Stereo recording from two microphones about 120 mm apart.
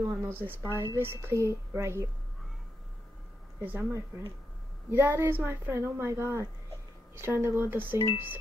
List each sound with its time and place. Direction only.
0.0 s a woman's voice: 20° right (ahead or behind)
3.6 s a woman's voice: 15° right (ahead or behind)